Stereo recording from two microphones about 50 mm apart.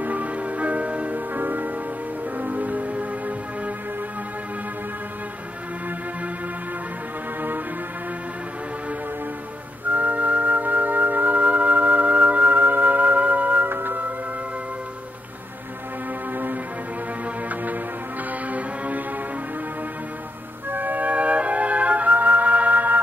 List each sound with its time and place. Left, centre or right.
0.0 s music: right
9.8 s flute: right
13.7 s music: right
18.5 s music: right
20.7 s music: right